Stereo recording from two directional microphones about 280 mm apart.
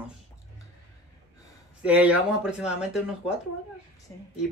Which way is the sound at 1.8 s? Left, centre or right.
Centre.